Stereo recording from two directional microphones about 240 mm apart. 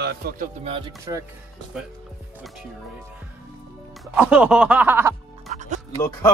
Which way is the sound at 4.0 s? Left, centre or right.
Centre.